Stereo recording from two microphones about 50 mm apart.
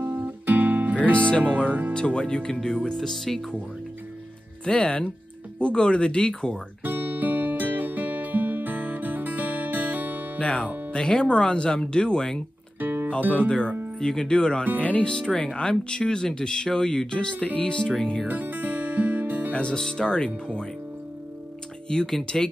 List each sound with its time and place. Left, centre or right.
0.0 s guitar: right
1.7 s speech: right
2.0 s speech: centre
4.6 s speech: centre
6.8 s music: right
10.4 s speech: left
12.8 s music: right
13.2 s speech: right
13.9 s speech: centre
14.8 s speech: left
15.0 s speech: centre
18.2 s music: right
19.5 s speech: centre
21.8 s speech: centre